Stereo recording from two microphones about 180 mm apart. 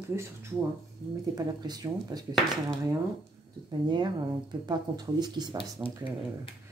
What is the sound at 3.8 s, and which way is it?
Speech, 25° right (ahead or behind).